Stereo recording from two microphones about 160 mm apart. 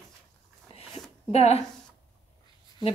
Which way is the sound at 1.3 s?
40° left (ahead or behind).